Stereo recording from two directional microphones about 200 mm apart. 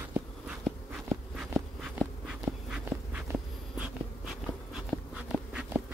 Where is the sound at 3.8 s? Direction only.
Centre (ahead or behind).